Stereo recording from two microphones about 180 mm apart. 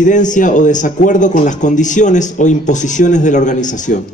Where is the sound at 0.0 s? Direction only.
45° left (ahead or behind).